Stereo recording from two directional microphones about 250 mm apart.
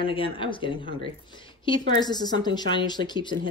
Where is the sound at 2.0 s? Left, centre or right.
Centre.